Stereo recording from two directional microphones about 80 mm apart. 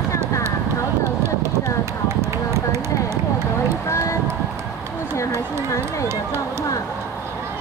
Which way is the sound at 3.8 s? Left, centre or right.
Left.